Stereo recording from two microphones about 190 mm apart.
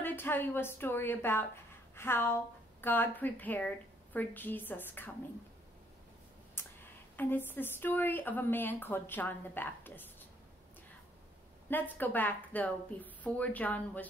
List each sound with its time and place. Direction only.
0.0 s a woman's voice: 10° left (ahead or behind)
6.6 s a sound: 10° left (ahead or behind)
7.2 s a woman's voice: 10° left (ahead or behind)
11.7 s a woman's voice: 10° left (ahead or behind)